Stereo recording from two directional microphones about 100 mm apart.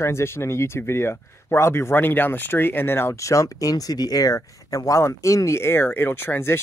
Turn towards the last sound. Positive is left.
turn(degrees=25)  # may be behind; listen again after turning